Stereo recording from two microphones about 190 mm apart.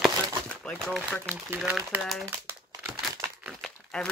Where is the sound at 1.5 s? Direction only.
5° right (ahead or behind).